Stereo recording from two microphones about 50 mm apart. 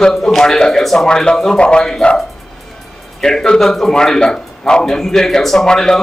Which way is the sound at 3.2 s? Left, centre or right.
Centre.